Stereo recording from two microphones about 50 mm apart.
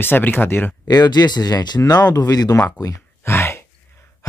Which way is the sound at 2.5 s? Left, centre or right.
Left.